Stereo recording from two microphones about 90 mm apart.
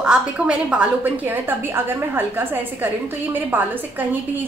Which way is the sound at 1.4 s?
25° right (ahead or behind).